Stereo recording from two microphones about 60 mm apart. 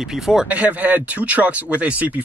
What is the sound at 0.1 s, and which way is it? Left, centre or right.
Speech, centre.